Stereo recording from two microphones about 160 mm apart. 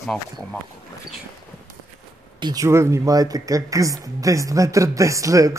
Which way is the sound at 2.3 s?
25° right (ahead or behind).